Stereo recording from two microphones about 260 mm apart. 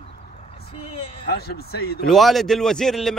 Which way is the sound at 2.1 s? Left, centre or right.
Centre.